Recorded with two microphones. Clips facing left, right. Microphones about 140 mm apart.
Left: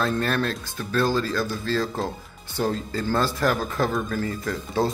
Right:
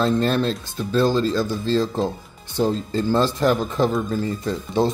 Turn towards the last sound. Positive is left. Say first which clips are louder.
# right 3 dB
turn(degrees=-25)  # may be behind; listen again after turning